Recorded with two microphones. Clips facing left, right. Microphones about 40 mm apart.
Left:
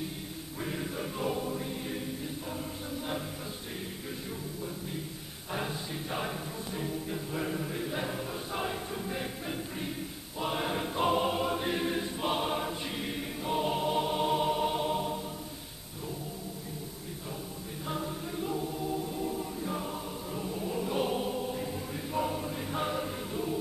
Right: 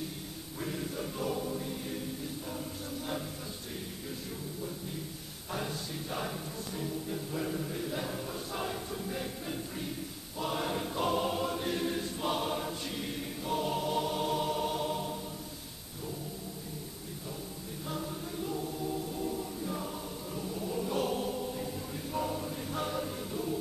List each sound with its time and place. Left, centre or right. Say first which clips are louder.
0.6 s choir: left 1 dB; left
5.5 s music: left 2 dB; left
10.4 s choir: left 2 dB; left
17.8 s choir: left 3 dB; left